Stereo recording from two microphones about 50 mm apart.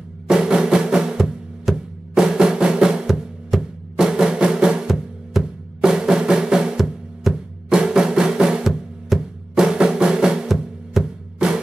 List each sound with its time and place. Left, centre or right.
0.3 s music: centre